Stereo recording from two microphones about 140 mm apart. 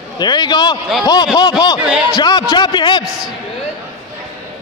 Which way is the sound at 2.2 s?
30° left (ahead or behind).